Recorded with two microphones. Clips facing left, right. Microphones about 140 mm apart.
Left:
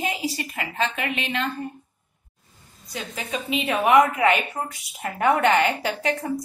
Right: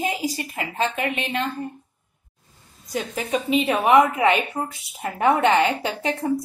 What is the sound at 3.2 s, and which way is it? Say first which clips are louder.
Speech: right 4 dB; 40° right (ahead or behind).